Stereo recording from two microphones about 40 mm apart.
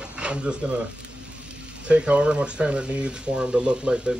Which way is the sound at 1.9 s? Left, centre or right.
Right.